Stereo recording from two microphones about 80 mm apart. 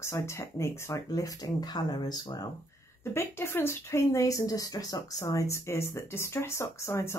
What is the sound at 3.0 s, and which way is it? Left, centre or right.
Speech, left.